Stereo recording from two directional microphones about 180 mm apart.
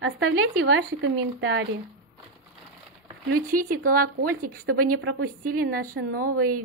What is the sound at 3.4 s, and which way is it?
A woman's voice, 50° right (ahead or behind).